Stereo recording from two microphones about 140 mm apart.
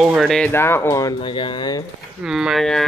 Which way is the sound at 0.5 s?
15° left (ahead or behind).